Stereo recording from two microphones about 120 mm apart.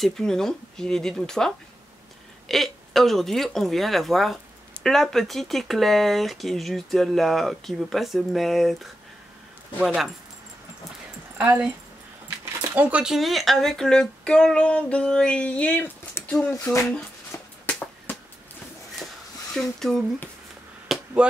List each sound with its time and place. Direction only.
0.0 s speech: 5° left (ahead or behind)
11.3 s speech: 10° right (ahead or behind)
12.7 s speech: 10° right (ahead or behind); by 16.8 s 25° left (ahead or behind)
17.3 s a sound: 20° left (ahead or behind)
19.5 s speech: 5° left (ahead or behind)
20.9 s chop: 10° right (ahead or behind)